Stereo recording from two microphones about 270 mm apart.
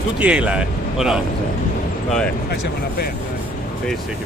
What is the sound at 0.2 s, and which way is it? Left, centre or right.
Speech, centre.